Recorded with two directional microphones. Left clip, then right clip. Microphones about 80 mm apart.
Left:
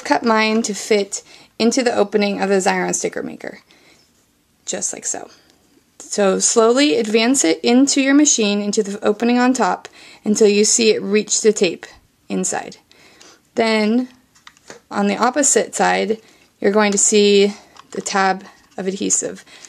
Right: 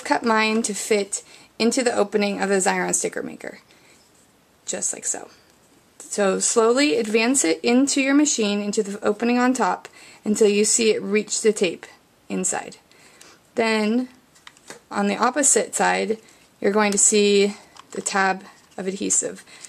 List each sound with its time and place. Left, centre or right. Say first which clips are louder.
0.0 s speech: left 4 dB; left
4.6 s speech: left 4 dB; left